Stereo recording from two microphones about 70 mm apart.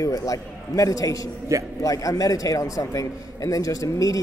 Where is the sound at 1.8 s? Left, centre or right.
Left.